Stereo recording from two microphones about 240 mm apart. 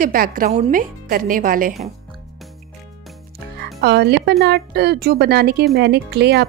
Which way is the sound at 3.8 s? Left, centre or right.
Right.